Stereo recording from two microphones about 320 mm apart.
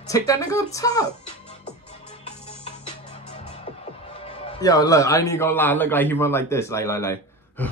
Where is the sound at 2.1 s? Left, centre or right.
Centre.